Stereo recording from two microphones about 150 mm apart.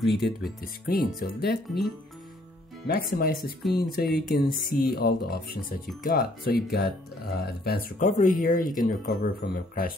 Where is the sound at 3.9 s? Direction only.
90° left; by 8.9 s 65° left (ahead or behind).